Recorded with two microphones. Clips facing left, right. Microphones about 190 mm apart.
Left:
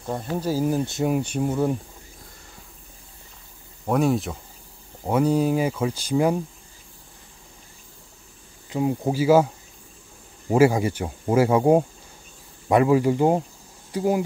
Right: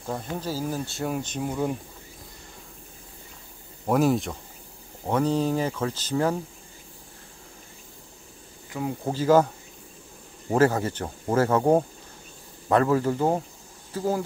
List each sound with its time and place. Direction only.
0.0 s speech: 5° left (ahead or behind)
3.8 s speech: centre (ahead or behind)
8.6 s speech: 20° left (ahead or behind)
9.1 s speech: 10° left (ahead or behind)
10.5 s speech: 10° left (ahead or behind)